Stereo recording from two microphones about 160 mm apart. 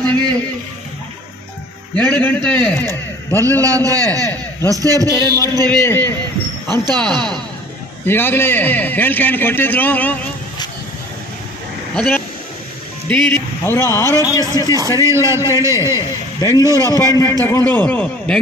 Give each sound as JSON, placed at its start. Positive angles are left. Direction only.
{"t": 2.0, "sound": "a man's voice", "side_deg": 10}
{"t": 3.3, "sound": "a man's voice", "side_deg": -20}
{"t": 5.0, "sound": "a man's voice", "side_deg": 20}
{"t": 6.7, "sound": "a man's voice", "side_deg": -25}
{"t": 8.0, "sound": "a man's voice", "side_deg": 15}
{"t": 11.9, "sound": "a man's voice", "side_deg": 5}
{"t": 15.0, "sound": "a man's voice", "side_deg": -20}
{"t": 15.9, "sound": "a man's voice", "side_deg": 25}